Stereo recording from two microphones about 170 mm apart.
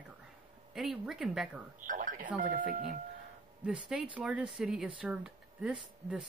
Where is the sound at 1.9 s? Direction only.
50° right (ahead or behind).